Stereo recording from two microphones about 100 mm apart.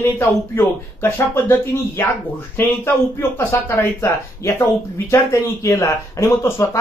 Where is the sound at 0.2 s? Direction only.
25° left (ahead or behind).